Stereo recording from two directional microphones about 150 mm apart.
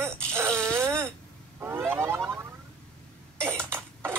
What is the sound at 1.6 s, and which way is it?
Emergency vehicle, 15° right (ahead or behind).